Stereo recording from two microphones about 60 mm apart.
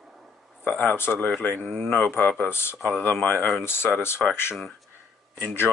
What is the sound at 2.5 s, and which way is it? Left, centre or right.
Speech, left.